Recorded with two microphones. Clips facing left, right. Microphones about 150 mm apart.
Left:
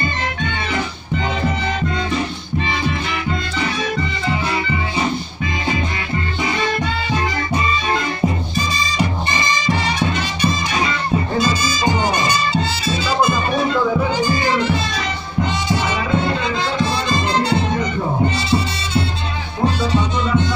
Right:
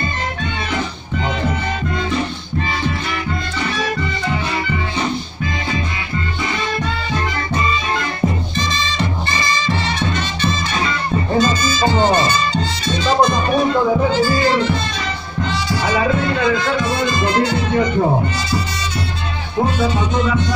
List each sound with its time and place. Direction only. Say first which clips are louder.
8.5 s music: left 1 dB; 15° left (ahead or behind)
16.8 s music: right 1 dB; 30° left (ahead or behind)